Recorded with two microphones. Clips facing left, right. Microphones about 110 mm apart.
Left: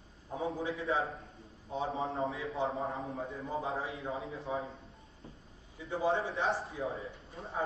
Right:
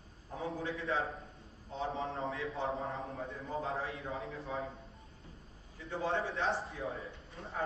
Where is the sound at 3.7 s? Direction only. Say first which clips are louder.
Left 2 dB; 30° left (ahead or behind).